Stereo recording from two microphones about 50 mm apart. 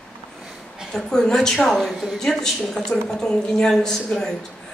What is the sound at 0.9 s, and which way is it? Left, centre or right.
A man's voice, centre.